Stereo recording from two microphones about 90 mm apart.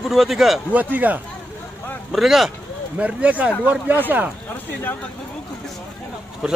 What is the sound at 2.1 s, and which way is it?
Speech, 5° right (ahead or behind).